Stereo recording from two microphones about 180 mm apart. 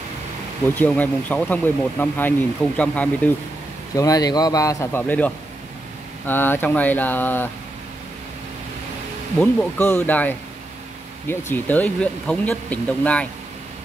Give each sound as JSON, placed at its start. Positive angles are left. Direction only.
{"t": 0.7, "sound": "speech", "side_deg": 10}
{"t": 3.9, "sound": "speech", "side_deg": 20}
{"t": 9.4, "sound": "speech", "side_deg": 5}